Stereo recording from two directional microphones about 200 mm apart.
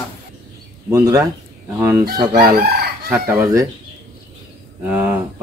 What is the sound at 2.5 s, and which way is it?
Crowing, 50° right (ahead or behind).